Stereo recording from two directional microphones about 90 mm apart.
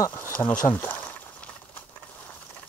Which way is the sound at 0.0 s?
25° left (ahead or behind).